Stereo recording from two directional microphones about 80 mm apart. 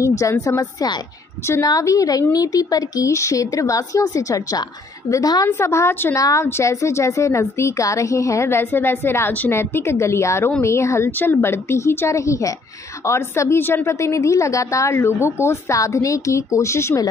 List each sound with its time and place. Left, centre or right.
0.0 s a woman's voice: left
5.6 s a woman's voice: left
6.1 s a woman's voice: left